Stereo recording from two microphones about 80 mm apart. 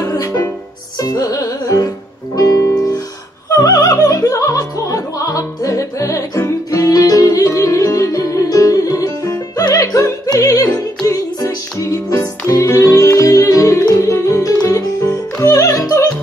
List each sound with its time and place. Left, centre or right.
0.0 s music: left